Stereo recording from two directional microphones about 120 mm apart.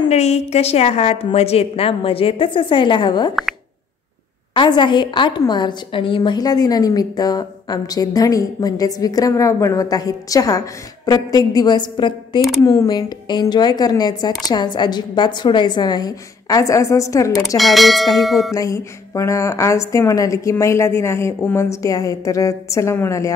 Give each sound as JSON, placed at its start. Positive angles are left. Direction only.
{"t": 0.1, "sound": "a woman's voice", "side_deg": 65}
{"t": 4.6, "sound": "a woman's voice", "side_deg": 40}
{"t": 17.6, "sound": "bell", "side_deg": 0}
{"t": 18.5, "sound": "a woman's voice", "side_deg": 25}